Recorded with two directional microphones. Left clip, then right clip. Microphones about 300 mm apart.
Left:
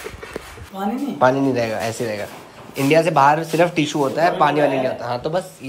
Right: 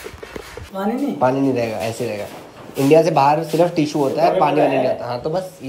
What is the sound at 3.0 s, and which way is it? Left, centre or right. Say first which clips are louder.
A man's voice: even; left.